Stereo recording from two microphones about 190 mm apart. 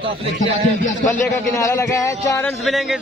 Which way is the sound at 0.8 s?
40° left (ahead or behind).